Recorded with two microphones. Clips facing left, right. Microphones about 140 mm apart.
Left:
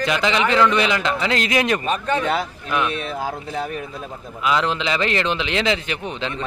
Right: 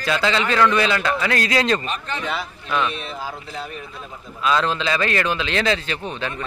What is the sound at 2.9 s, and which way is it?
Speech, 50° left (ahead or behind).